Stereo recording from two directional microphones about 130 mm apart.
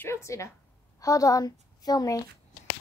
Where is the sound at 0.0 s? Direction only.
20° left (ahead or behind).